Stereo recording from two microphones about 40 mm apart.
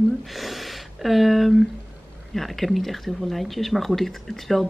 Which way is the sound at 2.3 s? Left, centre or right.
Centre.